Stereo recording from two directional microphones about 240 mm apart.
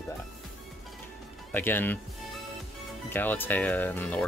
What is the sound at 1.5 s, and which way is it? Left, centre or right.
Speech, centre.